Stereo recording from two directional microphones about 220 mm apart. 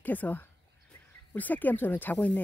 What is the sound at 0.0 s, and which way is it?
Speech, 10° left (ahead or behind).